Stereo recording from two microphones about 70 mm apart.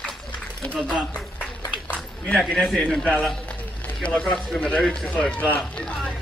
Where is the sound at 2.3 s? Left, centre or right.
Centre.